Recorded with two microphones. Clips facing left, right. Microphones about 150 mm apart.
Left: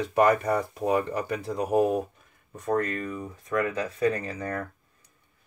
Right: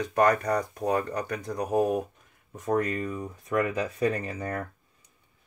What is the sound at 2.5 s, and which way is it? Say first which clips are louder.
Speech: even; 10° right (ahead or behind).